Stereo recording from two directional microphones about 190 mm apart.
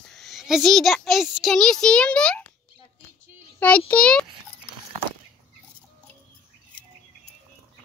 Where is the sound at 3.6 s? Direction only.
5° left (ahead or behind).